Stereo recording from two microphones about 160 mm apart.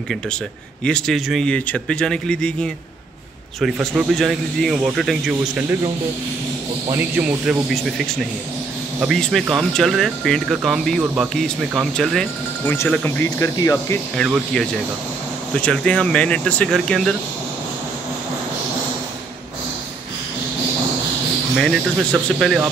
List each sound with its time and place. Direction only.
0.8 s speech: 5° left (ahead or behind)
6.9 s speech: 10° right (ahead or behind); by 13.9 s 20° left (ahead or behind)
14.1 s speech: 5° left (ahead or behind)
21.5 s speech: centre (ahead or behind)